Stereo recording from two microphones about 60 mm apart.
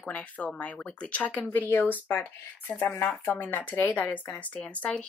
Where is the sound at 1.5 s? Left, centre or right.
Left.